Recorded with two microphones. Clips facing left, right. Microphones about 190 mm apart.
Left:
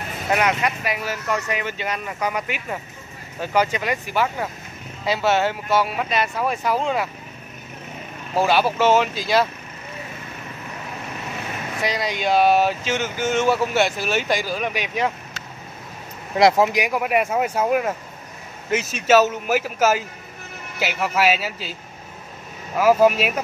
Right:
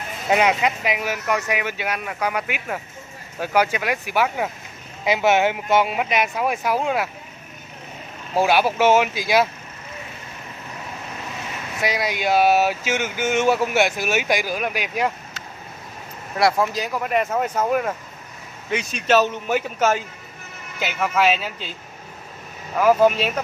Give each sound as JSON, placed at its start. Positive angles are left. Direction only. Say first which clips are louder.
{"t": 0.3, "sound": "speech", "louder": "right 2 dB", "side_deg": -20}
{"t": 8.4, "sound": "speech", "louder": "right 1 dB", "side_deg": -15}
{"t": 11.8, "sound": "speech", "louder": "right 1 dB", "side_deg": -10}
{"t": 16.3, "sound": "speech", "louder": "left 4 dB", "side_deg": 20}
{"t": 22.8, "sound": "speech", "louder": "even", "side_deg": 5}